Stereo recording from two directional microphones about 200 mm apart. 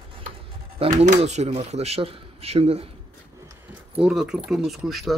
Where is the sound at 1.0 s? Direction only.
35° right (ahead or behind).